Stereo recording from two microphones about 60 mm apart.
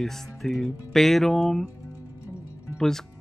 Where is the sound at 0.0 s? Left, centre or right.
Centre.